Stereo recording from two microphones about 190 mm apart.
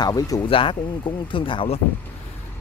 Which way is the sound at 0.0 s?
20° left (ahead or behind).